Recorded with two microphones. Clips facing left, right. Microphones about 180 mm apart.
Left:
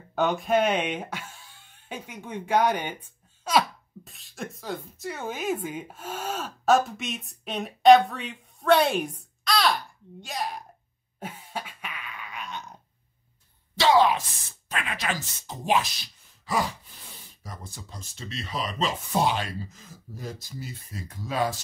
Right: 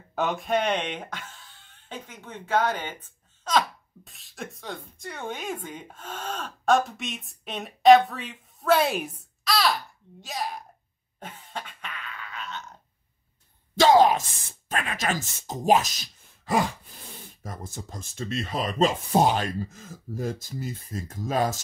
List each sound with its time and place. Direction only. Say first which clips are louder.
0.1 s speech: left 2 dB; centre (ahead or behind)
11.1 s cough: left 2 dB; 10° left (ahead or behind)
13.7 s a sound: right 3 dB; 45° right (ahead or behind)
15.0 s speech: right 3 dB; 45° right (ahead or behind)